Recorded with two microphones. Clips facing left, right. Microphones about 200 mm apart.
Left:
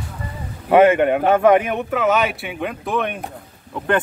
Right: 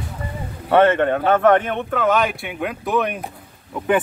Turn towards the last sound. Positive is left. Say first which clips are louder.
# right 1 dB
turn(degrees=-5)  # may be behind; listen again after turning